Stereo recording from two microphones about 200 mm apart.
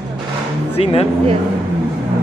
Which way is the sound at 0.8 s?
30° left (ahead or behind).